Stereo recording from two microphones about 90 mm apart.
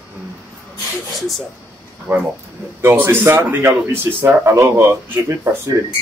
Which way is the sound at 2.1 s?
30° right (ahead or behind).